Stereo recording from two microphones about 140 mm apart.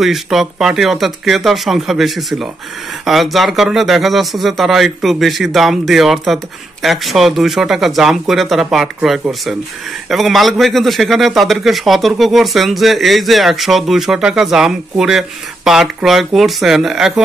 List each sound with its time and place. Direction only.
0.0 s speech: centre (ahead or behind)